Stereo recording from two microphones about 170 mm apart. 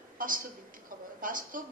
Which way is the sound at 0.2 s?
55° right (ahead or behind).